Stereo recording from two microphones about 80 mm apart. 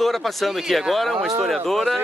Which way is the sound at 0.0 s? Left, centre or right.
Centre.